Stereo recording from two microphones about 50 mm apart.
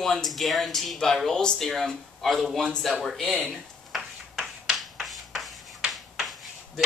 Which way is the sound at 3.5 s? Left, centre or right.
Centre.